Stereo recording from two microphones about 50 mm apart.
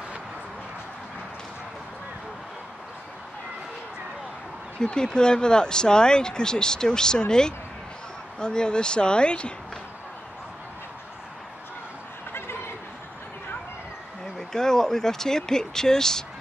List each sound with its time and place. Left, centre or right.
4.7 s speech: centre
12.3 s a sound: left
14.5 s speech: centre